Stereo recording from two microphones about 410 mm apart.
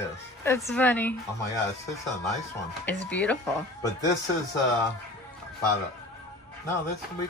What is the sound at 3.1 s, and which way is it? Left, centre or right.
Speech, centre.